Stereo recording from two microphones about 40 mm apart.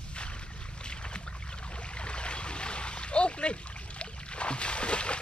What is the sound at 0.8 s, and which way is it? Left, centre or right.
Boat, left.